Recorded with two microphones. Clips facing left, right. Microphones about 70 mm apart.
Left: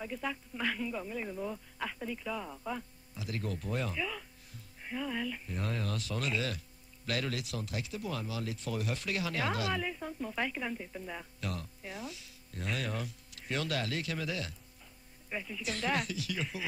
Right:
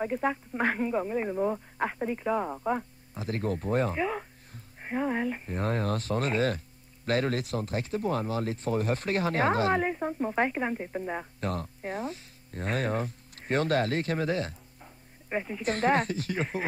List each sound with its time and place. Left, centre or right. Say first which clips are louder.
0.0 s speech: right 9 dB; right